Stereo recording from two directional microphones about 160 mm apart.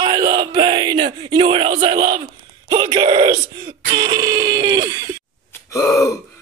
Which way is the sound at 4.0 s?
30° right (ahead or behind).